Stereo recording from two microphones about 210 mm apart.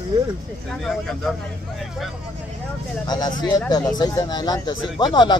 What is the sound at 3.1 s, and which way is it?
Speech, 20° left (ahead or behind).